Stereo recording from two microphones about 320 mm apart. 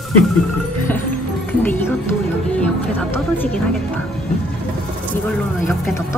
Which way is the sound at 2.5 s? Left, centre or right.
Centre.